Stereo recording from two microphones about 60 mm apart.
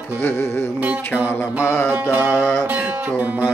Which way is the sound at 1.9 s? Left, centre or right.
Right.